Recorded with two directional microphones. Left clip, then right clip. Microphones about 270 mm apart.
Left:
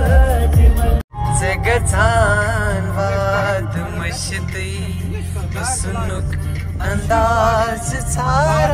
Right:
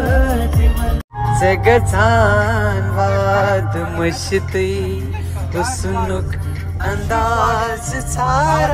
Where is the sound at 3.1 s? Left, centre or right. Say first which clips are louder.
Right 2 dB; right.